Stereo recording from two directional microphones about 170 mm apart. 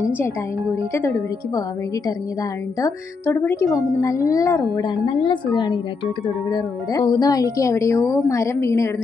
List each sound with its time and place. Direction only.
0.9 s a woman's voice: 15° left (ahead or behind)
2.8 s a woman's voice: 15° left (ahead or behind)